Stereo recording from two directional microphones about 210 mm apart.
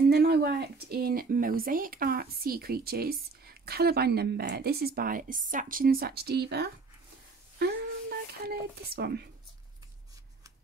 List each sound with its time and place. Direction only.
0.1 s speech: 50° right (ahead or behind)